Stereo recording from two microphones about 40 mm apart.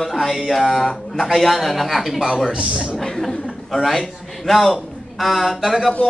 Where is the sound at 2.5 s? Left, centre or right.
Right.